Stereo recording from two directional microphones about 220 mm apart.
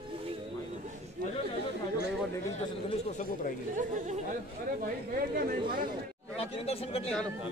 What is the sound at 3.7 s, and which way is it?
Chatter, 35° right (ahead or behind).